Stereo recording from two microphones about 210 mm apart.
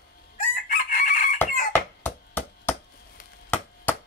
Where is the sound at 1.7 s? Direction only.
10° left (ahead or behind).